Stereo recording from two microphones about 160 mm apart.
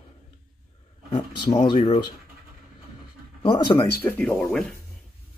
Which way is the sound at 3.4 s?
30° left (ahead or behind).